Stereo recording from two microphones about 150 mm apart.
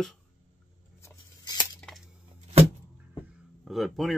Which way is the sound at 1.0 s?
25° left (ahead or behind).